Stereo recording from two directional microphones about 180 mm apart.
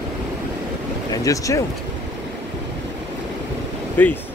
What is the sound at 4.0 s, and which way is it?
Speech, 10° left (ahead or behind).